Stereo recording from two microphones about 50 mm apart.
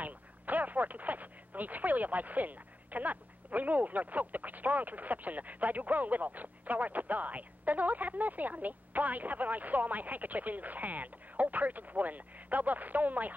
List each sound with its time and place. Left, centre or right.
0.0 s speech: right